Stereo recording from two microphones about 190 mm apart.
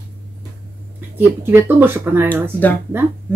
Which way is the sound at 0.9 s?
10° right (ahead or behind).